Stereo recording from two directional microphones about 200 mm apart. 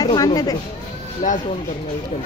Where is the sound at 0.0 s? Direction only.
20° left (ahead or behind).